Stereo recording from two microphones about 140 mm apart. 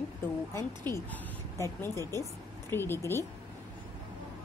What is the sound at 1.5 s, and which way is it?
A woman's voice, 20° left (ahead or behind).